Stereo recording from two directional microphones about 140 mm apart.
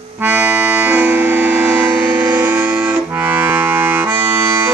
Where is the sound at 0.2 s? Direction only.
10° right (ahead or behind).